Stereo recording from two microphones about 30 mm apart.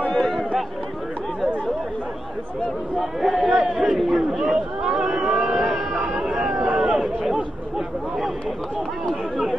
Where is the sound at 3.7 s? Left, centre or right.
Centre.